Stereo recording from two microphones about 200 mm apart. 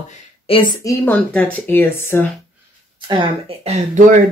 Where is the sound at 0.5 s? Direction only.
25° left (ahead or behind).